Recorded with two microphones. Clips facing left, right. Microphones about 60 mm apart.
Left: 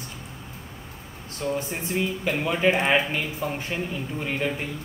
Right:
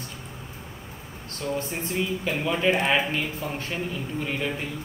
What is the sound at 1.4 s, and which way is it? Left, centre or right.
Speech, centre.